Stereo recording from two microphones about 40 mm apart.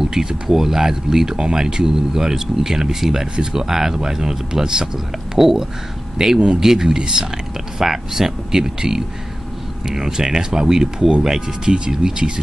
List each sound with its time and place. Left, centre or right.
0.0 s speech: centre